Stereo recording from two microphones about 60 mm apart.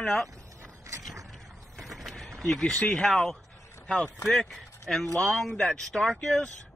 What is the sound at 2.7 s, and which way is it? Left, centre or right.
Speech, left.